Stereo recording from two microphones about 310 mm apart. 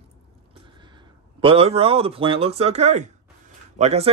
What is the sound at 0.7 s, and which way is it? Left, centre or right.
A man's voice, centre.